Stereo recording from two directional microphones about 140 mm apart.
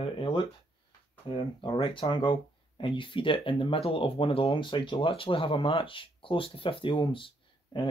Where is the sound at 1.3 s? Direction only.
35° left (ahead or behind).